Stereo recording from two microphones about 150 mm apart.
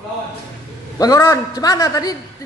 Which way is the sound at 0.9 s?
25° left (ahead or behind).